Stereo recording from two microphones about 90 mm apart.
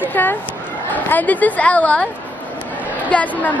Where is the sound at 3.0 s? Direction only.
15° left (ahead or behind).